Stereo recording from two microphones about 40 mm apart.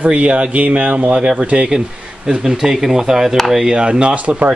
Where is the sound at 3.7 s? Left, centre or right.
Right.